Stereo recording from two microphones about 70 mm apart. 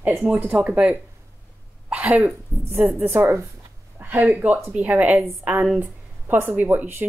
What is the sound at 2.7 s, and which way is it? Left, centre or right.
Speech, right.